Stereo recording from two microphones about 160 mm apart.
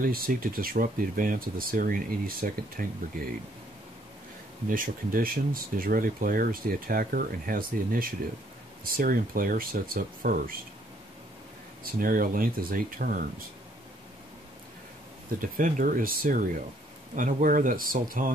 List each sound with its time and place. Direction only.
0.0 s speech: 65° right (ahead or behind)
4.6 s speech: 60° right (ahead or behind)
11.8 s speech: 60° right (ahead or behind)
15.4 s speech: 55° right (ahead or behind)